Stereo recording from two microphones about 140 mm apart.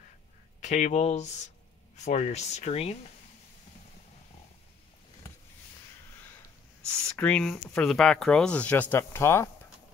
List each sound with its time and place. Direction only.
0.6 s speech: 55° left (ahead or behind)
7.1 s speech: 10° left (ahead or behind)